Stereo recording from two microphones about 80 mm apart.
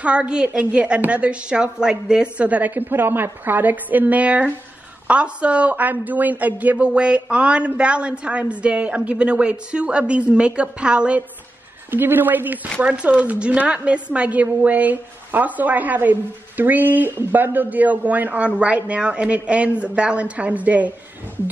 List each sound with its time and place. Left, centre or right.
0.0 s a woman's voice: centre
11.9 s a woman's voice: right
12.8 s a woman's voice: centre